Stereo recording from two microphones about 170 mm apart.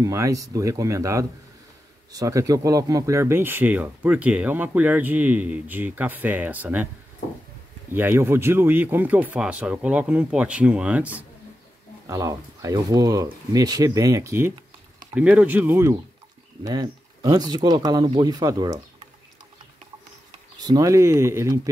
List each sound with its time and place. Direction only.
0.0 s speech: 20° right (ahead or behind)
7.9 s speech: 15° right (ahead or behind)
12.1 s speech: 20° right (ahead or behind)
20.5 s speech: 20° right (ahead or behind)